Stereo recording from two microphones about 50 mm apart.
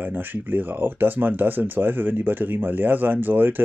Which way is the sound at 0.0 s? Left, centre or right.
Right.